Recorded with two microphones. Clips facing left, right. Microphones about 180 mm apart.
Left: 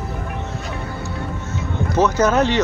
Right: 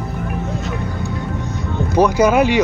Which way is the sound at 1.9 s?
10° right (ahead or behind).